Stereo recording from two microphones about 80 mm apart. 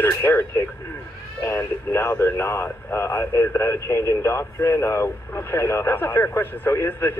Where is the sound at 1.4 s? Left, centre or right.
Left.